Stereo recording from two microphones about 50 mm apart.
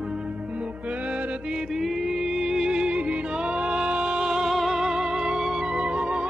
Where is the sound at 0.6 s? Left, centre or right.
Right.